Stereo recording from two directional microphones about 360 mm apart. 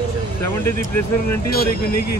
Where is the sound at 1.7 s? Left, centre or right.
Left.